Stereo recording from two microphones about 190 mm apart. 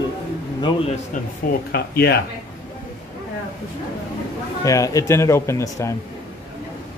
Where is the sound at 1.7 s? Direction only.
55° left (ahead or behind).